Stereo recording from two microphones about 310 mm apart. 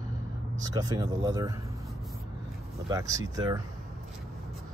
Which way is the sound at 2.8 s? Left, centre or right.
Centre.